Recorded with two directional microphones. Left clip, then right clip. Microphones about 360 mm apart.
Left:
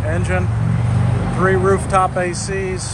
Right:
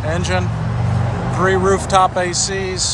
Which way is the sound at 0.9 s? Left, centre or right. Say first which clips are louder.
Right 2 dB; right.